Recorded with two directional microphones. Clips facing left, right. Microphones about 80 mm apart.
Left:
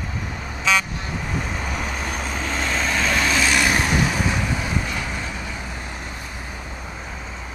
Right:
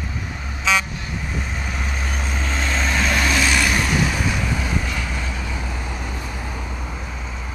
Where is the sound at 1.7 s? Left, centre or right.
Centre.